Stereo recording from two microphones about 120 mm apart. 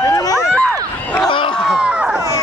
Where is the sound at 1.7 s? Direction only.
10° right (ahead or behind).